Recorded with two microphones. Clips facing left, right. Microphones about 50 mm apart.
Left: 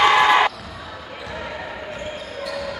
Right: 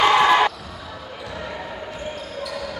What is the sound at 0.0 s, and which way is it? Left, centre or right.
Basketball bounce, centre.